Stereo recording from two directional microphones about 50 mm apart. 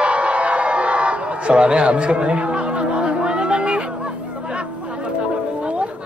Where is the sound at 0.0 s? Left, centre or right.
Right.